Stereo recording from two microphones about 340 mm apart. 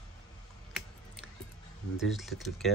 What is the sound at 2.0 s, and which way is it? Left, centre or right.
Speech, centre.